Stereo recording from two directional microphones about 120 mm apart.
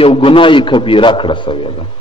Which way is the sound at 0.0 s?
50° left (ahead or behind).